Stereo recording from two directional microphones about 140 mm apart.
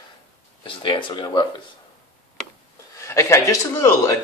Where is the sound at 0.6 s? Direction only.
35° left (ahead or behind).